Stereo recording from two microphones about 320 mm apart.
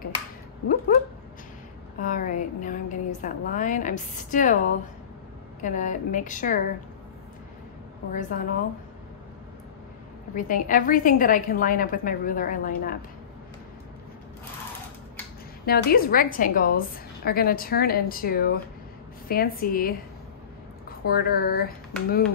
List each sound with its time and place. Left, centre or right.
2.0 s a woman's voice: left
5.6 s a woman's voice: left
8.1 s a woman's voice: left
10.3 s a woman's voice: left
15.6 s a woman's voice: left
21.0 s a woman's voice: left